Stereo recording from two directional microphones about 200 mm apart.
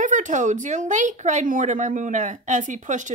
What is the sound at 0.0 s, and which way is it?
Speech, 40° right (ahead or behind).